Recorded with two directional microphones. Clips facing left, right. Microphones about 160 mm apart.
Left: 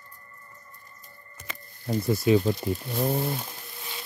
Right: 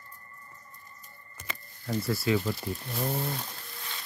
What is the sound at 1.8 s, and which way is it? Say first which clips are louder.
Speech: left 5 dB; 20° left (ahead or behind).